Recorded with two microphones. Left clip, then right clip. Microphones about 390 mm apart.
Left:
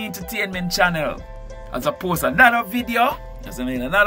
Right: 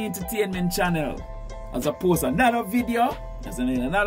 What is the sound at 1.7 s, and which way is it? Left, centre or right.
Speech, left.